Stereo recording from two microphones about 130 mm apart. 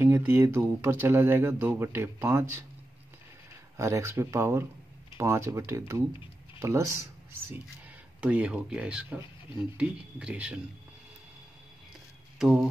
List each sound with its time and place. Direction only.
0.0 s speech: 15° right (ahead or behind)
3.7 s speech: 20° right (ahead or behind)
8.2 s speech: 10° right (ahead or behind)
12.4 s speech: centre (ahead or behind)